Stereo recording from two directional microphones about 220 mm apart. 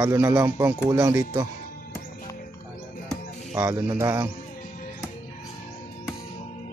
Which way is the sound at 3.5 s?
10° right (ahead or behind).